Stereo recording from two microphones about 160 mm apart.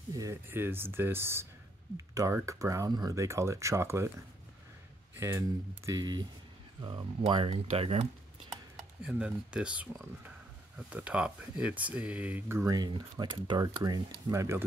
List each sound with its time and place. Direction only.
0.1 s speech: 20° right (ahead or behind)
5.1 s speech: 15° right (ahead or behind); by 8.0 s 40° right (ahead or behind)
9.0 s speech: 5° right (ahead or behind)